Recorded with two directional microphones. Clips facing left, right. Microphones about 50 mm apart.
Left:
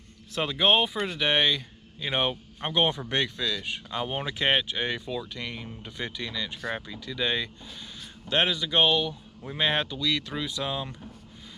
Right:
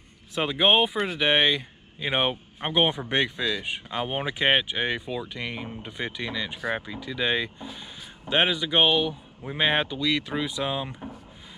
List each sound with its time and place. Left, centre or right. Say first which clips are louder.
0.3 s speech: right 2 dB; centre